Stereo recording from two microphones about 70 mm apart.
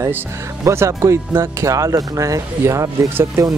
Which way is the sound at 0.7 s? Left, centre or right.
Right.